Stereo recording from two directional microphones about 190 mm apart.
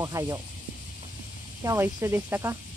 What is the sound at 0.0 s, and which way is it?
Speech, 20° right (ahead or behind).